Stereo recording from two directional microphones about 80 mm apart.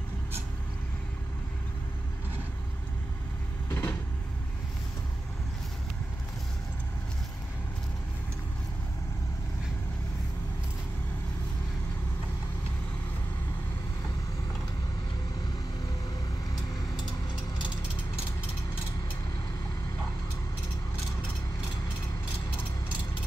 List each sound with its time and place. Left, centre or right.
3.7 s vehicle: left